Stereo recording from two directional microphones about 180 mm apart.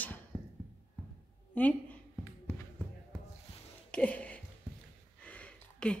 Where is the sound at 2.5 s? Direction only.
10° left (ahead or behind).